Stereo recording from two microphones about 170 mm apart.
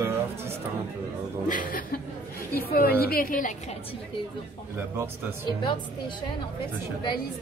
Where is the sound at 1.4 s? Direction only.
55° left (ahead or behind).